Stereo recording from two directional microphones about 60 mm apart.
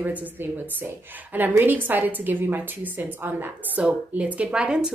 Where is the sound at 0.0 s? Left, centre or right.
Right.